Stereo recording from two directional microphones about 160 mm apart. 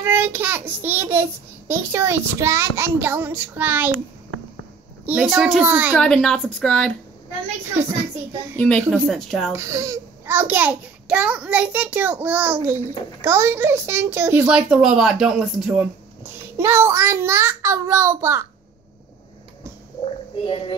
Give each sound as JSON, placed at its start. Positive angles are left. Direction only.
{"t": 0.0, "sound": "a child's voice", "side_deg": -15}
{"t": 5.0, "sound": "a child's voice", "side_deg": -5}
{"t": 5.9, "sound": "speech", "side_deg": 5}
{"t": 8.5, "sound": "a woman's voice", "side_deg": 5}
{"t": 9.5, "sound": "a child's voice", "side_deg": -15}
{"t": 20.4, "sound": "speech", "side_deg": 30}